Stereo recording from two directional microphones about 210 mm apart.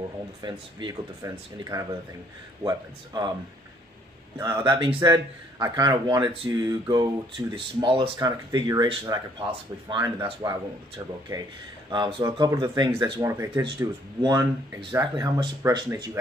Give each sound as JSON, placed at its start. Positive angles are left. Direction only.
{"t": 0.4, "sound": "speech", "side_deg": -20}
{"t": 4.4, "sound": "speech", "side_deg": -20}